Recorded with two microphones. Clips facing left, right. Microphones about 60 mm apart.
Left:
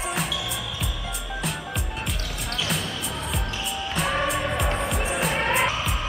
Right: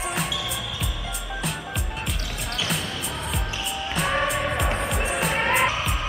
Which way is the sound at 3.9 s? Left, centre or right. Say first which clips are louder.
Right 1 dB; centre.